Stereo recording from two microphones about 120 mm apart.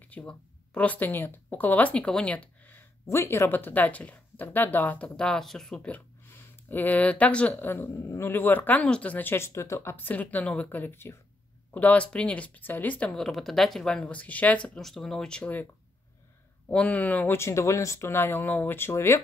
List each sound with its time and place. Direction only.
0.1 s speech: 10° left (ahead or behind)
5.8 s speech: 15° left (ahead or behind)